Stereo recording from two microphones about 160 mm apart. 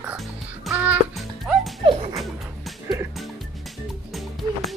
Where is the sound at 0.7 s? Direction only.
10° right (ahead or behind).